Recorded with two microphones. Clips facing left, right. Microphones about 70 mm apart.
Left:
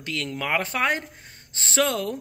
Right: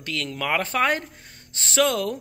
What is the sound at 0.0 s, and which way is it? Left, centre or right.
Speech, left.